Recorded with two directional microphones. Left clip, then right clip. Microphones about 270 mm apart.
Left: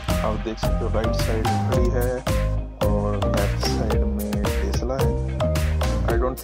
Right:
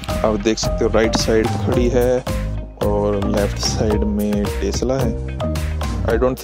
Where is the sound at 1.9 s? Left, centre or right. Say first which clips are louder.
Right 9 dB; right.